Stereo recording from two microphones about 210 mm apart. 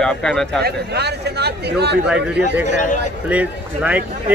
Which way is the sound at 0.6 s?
50° right (ahead or behind).